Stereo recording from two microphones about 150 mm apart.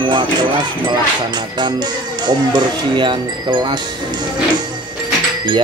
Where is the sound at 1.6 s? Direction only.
30° right (ahead or behind).